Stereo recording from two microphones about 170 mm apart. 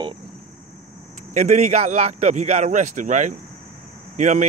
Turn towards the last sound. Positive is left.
turn(degrees=-45)  # may be behind; listen again after turning